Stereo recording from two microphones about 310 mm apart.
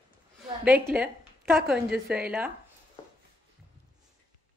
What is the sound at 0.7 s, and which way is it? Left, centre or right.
A woman's voice, centre.